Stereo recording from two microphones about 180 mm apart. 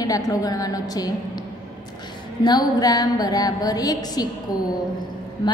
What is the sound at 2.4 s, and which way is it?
A woman's voice, 20° left (ahead or behind).